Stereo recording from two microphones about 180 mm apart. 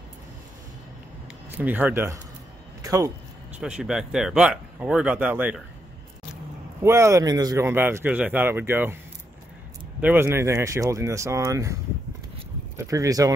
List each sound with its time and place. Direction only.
1.6 s speech: 10° right (ahead or behind)
2.8 s a sound: 20° right (ahead or behind)
3.5 s speech: 5° right (ahead or behind)
6.8 s speech: 15° right (ahead or behind)
9.9 s speech: 10° right (ahead or behind)